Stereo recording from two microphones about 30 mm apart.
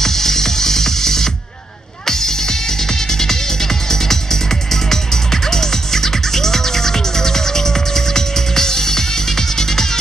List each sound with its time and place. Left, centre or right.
0.0 s music: centre